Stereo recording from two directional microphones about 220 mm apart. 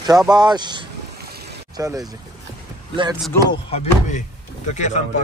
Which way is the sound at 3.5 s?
30° left (ahead or behind).